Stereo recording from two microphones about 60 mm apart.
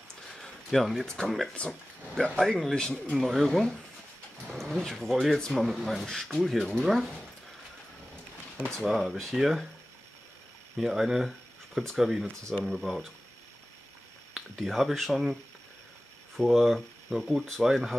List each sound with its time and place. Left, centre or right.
0.3 s a sound: centre
1.6 s speech: centre
8.7 s speech: centre
10.8 s speech: centre
14.6 s speech: centre
16.3 s speech: centre